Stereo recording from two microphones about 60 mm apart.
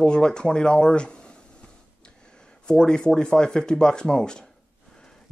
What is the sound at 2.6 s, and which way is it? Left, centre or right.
Speech, centre.